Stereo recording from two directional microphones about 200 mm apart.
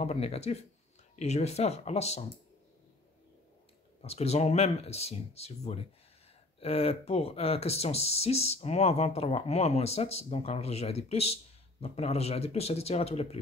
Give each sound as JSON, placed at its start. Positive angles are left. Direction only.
{"t": 0.0, "sound": "speech", "side_deg": 30}
{"t": 4.0, "sound": "speech", "side_deg": 30}